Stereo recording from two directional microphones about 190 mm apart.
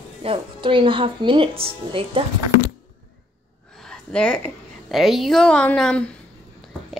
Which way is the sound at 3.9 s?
5° left (ahead or behind).